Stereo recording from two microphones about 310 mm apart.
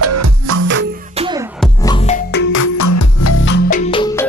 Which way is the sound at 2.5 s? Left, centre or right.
Left.